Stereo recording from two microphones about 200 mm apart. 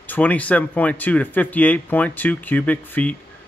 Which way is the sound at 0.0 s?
10° left (ahead or behind).